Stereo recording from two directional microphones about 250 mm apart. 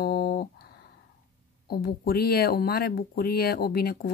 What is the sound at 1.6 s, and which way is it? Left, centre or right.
Speech, left.